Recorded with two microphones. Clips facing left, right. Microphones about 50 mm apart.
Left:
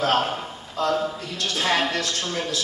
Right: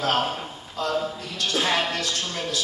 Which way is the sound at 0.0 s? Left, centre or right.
Centre.